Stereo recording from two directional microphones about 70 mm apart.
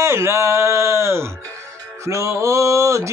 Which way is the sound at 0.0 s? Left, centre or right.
Right.